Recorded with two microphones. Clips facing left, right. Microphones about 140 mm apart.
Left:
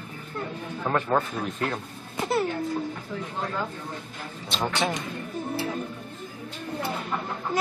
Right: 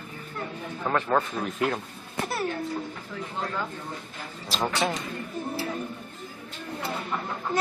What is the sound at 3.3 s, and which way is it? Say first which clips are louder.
Speech: even; 5° left (ahead or behind).